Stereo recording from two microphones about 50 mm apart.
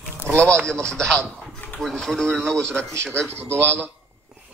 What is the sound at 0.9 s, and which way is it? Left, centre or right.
A man's voice, centre.